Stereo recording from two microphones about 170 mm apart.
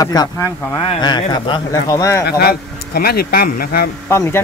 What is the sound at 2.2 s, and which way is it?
Speech, 65° left (ahead or behind).